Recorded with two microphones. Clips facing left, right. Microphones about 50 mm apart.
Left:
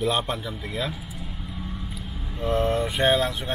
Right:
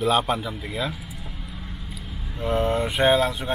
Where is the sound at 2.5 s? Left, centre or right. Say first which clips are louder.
Even; right.